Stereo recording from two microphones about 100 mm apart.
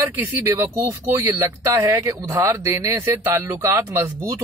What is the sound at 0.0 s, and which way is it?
Speech, 30° right (ahead or behind).